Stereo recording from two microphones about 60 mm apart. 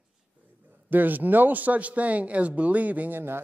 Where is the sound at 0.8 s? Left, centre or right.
Right.